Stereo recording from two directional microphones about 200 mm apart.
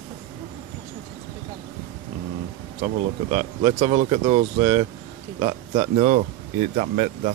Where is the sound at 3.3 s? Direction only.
30° right (ahead or behind).